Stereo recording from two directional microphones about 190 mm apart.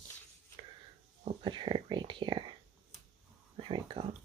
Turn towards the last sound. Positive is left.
turn(degrees=-30)  # may be behind; listen again after turning